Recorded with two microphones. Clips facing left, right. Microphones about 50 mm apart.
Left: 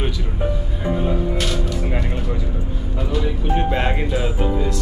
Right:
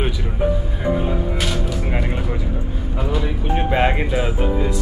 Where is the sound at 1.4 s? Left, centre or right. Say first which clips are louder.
Even; centre.